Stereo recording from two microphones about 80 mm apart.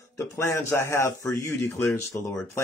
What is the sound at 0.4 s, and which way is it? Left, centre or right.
Speech, left.